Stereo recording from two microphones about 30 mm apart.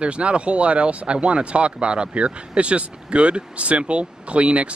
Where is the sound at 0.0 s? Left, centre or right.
Right.